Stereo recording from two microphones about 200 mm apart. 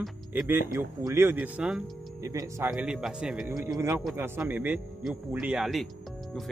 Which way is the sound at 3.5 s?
15° right (ahead or behind).